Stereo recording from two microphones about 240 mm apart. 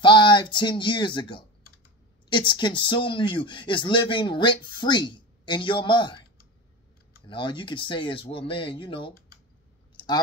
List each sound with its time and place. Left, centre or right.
0.0 s speech: centre
7.2 s speech: centre
9.9 s clicking: centre